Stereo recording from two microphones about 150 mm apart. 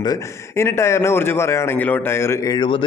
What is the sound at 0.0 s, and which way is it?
A man's voice, 20° left (ahead or behind).